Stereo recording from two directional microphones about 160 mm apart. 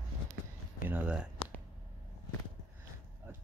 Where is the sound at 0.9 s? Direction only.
10° right (ahead or behind).